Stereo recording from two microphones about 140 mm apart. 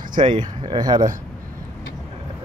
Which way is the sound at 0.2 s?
35° right (ahead or behind).